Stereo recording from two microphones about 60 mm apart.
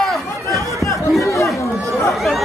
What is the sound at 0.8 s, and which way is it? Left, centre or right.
Chatter, left.